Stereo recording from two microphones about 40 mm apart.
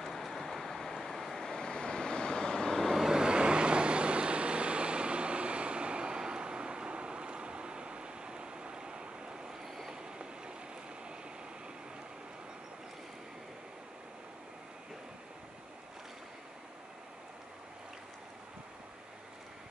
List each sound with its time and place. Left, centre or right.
0.0 s vehicle: centre
1.5 s vehicle: left
2.7 s vehicle: centre
3.1 s vehicle: right